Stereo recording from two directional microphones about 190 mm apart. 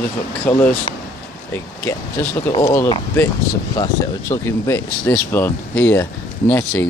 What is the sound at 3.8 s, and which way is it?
Speech, 20° left (ahead or behind).